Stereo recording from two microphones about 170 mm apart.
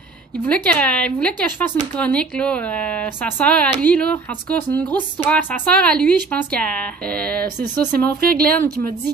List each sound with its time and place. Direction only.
0.5 s speech: 5° left (ahead or behind)
8.2 s a woman's voice: 60° right (ahead or behind)